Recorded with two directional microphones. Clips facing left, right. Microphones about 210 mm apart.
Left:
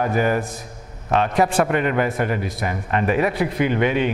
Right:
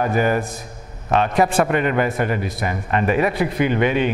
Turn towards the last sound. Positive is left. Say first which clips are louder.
# right 1 dB
turn(degrees=-15)  # may be behind; listen again after turning